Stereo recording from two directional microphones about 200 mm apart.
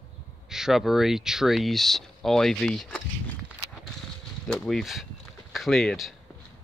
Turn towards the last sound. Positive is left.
turn(degrees=0)  # may be behind; listen again after turning